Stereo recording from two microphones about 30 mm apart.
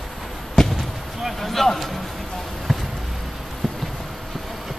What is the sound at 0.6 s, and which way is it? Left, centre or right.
Basketball bounce, centre.